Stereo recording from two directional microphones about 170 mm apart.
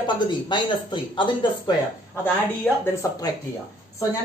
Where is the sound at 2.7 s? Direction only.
10° left (ahead or behind).